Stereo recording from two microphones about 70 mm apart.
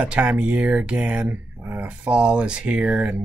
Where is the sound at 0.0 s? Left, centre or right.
Centre.